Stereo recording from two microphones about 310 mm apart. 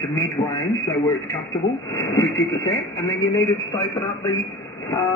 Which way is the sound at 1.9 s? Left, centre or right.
Centre.